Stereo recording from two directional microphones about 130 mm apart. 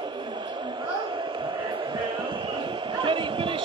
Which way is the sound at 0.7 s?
40° right (ahead or behind).